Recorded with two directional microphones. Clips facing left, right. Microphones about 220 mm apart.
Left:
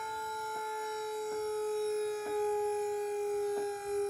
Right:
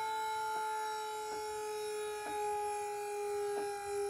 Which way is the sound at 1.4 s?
45° left (ahead or behind).